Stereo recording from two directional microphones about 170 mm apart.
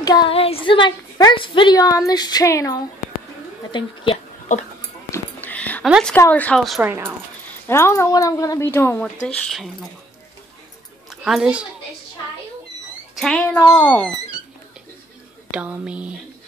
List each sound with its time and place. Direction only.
0.0 s a woman's voice: 25° left (ahead or behind)
3.7 s a woman's voice: 30° left (ahead or behind)
5.1 s whispering: 10° left (ahead or behind)
5.9 s speech: 5° right (ahead or behind)
6.1 s speech: 10° left (ahead or behind)
6.8 s a sound: 15° right (ahead or behind)
7.6 s speech: 15° left (ahead or behind)
11.1 s a woman's voice: centre (ahead or behind)
13.1 s speech: 5° left (ahead or behind)
13.6 s a woman's voice: 25° left (ahead or behind)
13.8 s speech: 10° left (ahead or behind)
15.5 s a sound: 10° right (ahead or behind)